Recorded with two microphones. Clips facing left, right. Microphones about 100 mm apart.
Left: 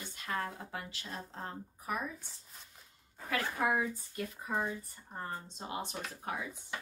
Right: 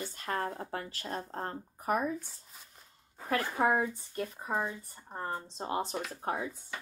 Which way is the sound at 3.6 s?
35° right (ahead or behind).